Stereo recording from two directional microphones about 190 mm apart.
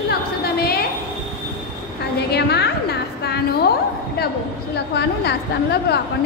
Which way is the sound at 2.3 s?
60° left (ahead or behind).